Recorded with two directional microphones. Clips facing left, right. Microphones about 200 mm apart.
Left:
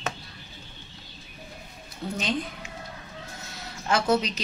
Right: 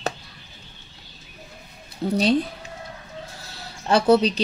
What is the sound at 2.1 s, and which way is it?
A woman's voice, 35° right (ahead or behind).